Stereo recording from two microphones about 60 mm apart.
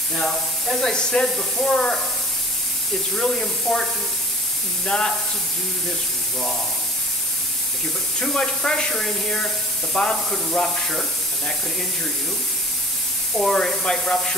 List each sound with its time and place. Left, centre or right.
0.1 s speech: centre
3.2 s speech: centre
4.8 s speech: centre
8.2 s speech: centre
13.4 s speech: centre